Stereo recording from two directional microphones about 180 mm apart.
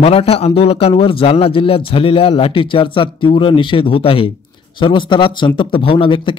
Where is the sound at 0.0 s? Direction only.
35° left (ahead or behind).